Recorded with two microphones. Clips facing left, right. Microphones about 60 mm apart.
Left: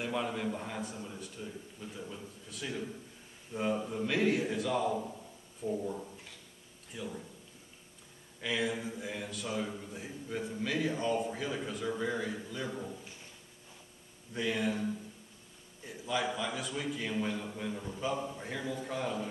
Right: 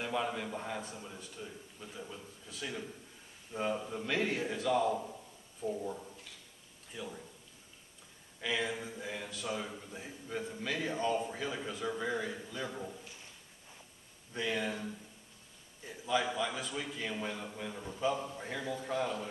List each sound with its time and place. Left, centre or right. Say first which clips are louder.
0.0 s a man's voice: left 1 dB; centre
8.4 s a man's voice: left 2 dB; centre
14.3 s a man's voice: left 2 dB; centre